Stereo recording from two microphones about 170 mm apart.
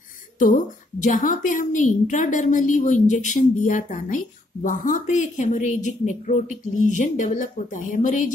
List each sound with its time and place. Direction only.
0.4 s a woman's voice: 45° left (ahead or behind)